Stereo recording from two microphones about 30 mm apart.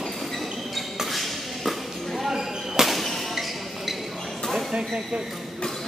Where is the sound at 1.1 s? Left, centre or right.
Centre.